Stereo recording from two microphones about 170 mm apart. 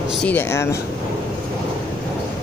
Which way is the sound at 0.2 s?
10° left (ahead or behind).